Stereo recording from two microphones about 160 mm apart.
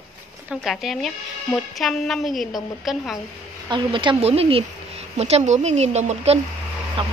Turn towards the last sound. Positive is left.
turn(degrees=-35)  # may be behind; listen again after turning